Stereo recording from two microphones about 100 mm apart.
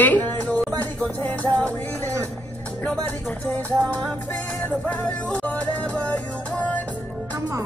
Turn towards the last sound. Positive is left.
turn(degrees=15)  # may be behind; listen again after turning